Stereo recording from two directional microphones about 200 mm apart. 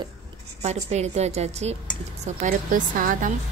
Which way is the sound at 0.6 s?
35° right (ahead or behind).